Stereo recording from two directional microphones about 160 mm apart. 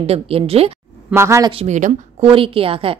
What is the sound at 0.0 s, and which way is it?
Speech, 40° right (ahead or behind).